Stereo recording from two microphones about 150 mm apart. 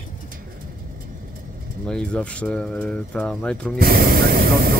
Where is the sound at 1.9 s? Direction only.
5° left (ahead or behind).